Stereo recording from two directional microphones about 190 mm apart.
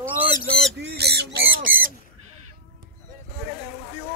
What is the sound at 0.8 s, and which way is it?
Crow, 60° right (ahead or behind).